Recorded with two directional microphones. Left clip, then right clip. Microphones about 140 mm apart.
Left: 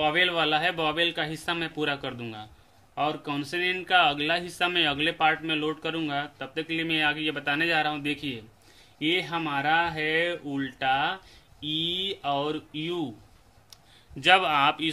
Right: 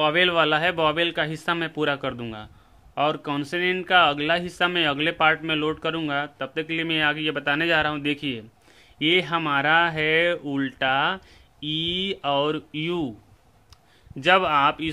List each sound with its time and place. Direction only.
0.0 s a man's voice: 55° right (ahead or behind)
14.2 s speech: 40° right (ahead or behind)